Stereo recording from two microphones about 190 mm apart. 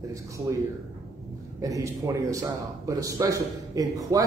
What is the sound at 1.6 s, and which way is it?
A man's voice, 15° right (ahead or behind).